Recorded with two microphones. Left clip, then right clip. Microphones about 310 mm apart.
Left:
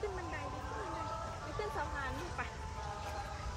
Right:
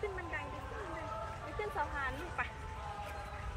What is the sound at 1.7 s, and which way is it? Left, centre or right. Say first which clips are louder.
Speech: right 2 dB; centre.